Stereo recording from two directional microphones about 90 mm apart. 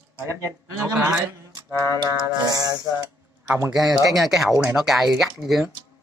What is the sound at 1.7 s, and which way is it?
Music, 40° left (ahead or behind).